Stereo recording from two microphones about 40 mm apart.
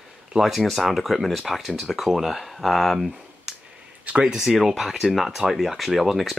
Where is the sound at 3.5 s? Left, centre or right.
Centre.